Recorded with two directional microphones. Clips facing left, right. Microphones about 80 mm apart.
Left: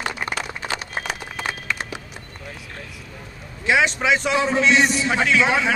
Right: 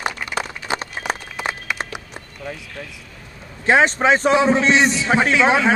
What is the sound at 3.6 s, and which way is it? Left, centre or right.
A man's voice, right.